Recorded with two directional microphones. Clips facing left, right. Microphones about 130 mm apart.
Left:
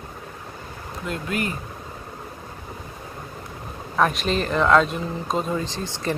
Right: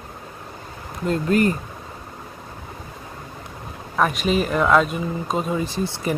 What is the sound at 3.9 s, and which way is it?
Speech, 5° right (ahead or behind).